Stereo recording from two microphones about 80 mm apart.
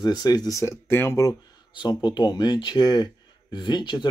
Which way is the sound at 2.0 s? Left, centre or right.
Left.